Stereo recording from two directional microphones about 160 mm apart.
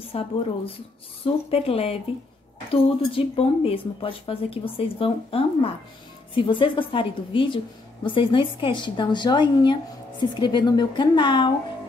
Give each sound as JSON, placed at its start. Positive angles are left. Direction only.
{"t": 0.1, "sound": "a woman's voice", "side_deg": 40}